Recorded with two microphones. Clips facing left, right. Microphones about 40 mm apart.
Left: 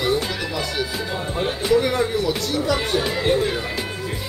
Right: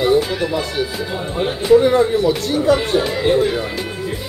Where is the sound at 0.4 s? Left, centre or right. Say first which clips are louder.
Right 5 dB; centre.